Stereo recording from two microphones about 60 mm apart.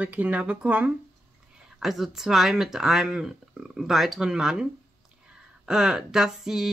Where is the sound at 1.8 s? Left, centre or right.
Centre.